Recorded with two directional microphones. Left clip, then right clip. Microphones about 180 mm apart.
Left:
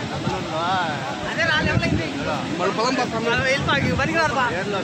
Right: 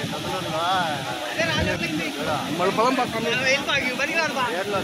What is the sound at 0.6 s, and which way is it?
Vehicle, 50° right (ahead or behind).